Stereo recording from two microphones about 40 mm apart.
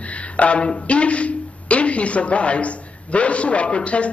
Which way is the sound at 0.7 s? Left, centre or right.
Left.